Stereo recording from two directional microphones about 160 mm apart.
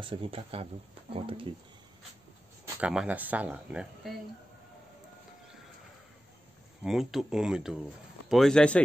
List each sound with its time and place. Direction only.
0.0 s speech: 35° right (ahead or behind)
2.8 s speech: 5° right (ahead or behind)
6.8 s speech: centre (ahead or behind)